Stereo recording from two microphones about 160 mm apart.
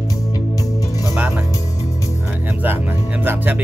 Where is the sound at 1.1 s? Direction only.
10° right (ahead or behind).